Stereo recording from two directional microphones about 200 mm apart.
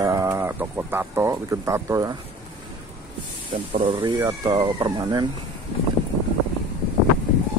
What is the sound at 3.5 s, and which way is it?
Speech, 30° right (ahead or behind).